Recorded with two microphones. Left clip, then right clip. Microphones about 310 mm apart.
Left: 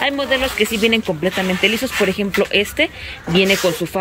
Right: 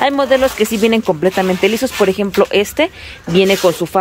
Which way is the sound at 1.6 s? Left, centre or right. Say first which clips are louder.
Right 1 dB; centre.